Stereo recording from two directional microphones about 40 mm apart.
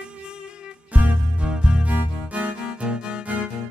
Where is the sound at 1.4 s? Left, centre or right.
Right.